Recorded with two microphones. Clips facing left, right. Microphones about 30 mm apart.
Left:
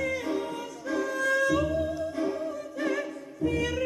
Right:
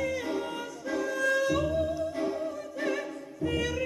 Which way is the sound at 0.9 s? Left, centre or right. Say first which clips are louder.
Left 1 dB; centre.